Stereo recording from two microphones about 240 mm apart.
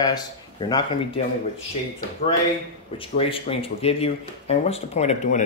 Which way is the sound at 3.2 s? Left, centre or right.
Left.